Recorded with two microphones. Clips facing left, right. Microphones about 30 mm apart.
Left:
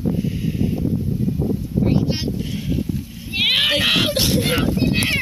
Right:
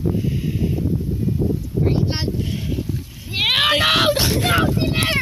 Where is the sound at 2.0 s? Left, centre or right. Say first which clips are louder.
Left 1 dB; right.